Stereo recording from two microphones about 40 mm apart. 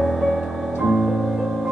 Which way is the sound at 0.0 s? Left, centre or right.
Centre.